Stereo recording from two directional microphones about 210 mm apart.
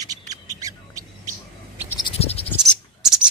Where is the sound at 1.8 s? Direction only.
20° left (ahead or behind).